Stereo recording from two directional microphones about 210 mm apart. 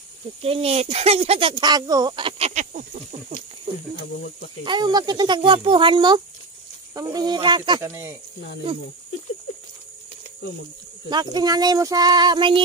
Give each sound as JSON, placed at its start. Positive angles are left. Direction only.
{"t": 0.4, "sound": "speech", "side_deg": -30}
{"t": 4.6, "sound": "speech", "side_deg": -20}
{"t": 11.1, "sound": "speech", "side_deg": -20}